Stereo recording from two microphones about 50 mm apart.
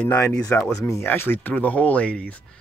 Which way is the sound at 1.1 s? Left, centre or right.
Left.